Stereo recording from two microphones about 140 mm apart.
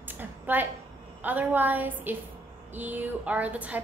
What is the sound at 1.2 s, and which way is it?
A woman's voice, 10° right (ahead or behind).